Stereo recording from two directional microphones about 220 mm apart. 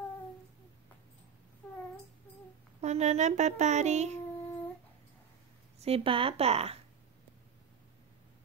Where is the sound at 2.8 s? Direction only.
30° right (ahead or behind).